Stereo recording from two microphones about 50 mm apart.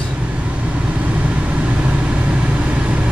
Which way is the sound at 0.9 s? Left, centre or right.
Right.